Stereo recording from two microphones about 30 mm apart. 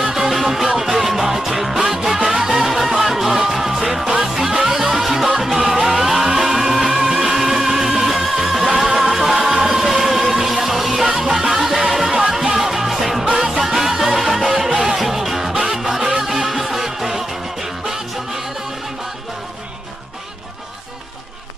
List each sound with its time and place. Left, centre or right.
0.0 s music: centre
13.2 s music: right
13.5 s music: centre